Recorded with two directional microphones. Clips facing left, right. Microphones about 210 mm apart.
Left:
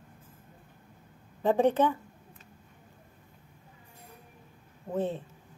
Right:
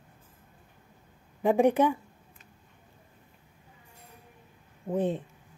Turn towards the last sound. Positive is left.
turn(degrees=-15)  # may be behind; listen again after turning